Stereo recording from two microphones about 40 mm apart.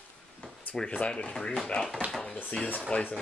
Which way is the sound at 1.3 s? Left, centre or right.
Centre.